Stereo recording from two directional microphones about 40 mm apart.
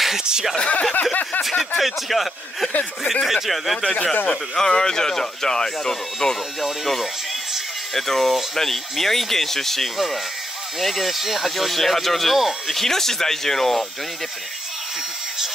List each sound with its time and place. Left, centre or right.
0.2 s speech: centre
0.6 s speech: left
1.8 s speech: centre
2.7 s speech: left
3.3 s speech: centre
3.9 s speech: left
4.3 s speech: centre
6.6 s speech: centre
12.7 s speech: centre